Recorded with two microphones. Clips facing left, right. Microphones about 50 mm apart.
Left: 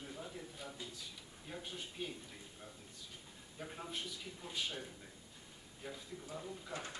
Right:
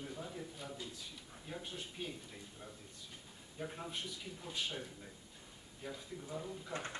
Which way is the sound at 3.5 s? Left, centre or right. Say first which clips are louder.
Right 2 dB; centre.